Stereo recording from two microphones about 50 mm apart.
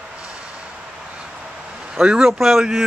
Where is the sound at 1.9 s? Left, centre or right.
Centre.